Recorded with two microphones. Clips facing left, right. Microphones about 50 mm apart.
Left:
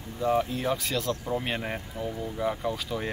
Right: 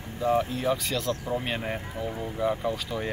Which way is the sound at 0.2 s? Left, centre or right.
Centre.